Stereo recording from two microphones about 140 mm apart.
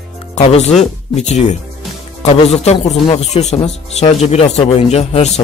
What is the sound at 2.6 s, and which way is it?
A man's voice, 50° left (ahead or behind).